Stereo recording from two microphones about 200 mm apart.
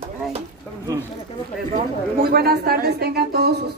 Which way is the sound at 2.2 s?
50° right (ahead or behind).